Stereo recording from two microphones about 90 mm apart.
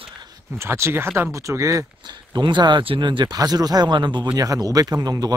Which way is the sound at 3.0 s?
55° right (ahead or behind).